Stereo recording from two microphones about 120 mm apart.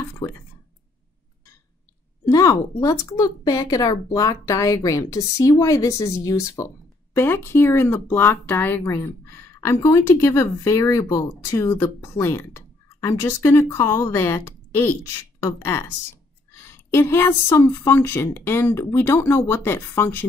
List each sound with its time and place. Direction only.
2.2 s speech: 25° left (ahead or behind)